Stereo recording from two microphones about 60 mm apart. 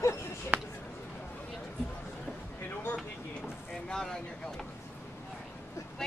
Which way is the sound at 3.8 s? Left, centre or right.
Centre.